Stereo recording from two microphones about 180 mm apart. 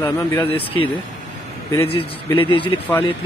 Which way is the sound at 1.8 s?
30° left (ahead or behind).